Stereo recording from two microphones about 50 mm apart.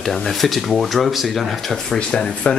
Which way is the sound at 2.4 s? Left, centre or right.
Left.